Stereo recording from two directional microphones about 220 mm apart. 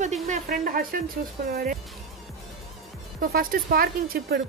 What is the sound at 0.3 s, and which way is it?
Speech, 40° right (ahead or behind).